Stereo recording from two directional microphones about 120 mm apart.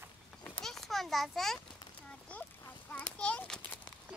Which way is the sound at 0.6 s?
Centre (ahead or behind).